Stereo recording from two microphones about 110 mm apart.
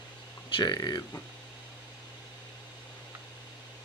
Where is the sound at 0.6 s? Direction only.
40° left (ahead or behind).